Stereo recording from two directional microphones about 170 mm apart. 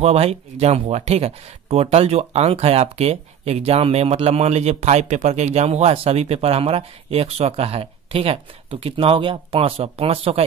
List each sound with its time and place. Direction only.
0.0 s speech: 35° right (ahead or behind)